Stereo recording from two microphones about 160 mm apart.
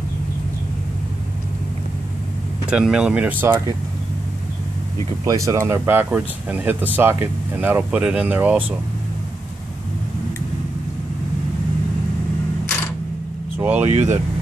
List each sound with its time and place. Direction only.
2.6 s speech: 5° right (ahead or behind)
5.2 s speech: 20° right (ahead or behind)
13.6 s speech: 10° right (ahead or behind)
13.8 s speech: 45° right (ahead or behind)